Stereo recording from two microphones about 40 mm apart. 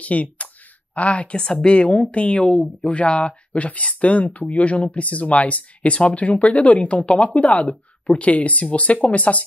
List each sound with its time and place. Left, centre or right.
0.0 s a woman's voice: left